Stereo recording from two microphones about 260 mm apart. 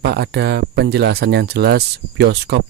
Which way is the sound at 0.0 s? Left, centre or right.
Right.